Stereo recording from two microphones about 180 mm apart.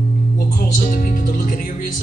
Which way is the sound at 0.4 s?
55° left (ahead or behind).